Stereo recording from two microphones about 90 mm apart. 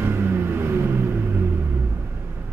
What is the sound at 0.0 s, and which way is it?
Vehicle, 25° right (ahead or behind).